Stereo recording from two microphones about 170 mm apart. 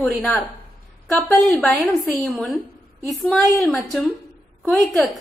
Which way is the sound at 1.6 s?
5° left (ahead or behind).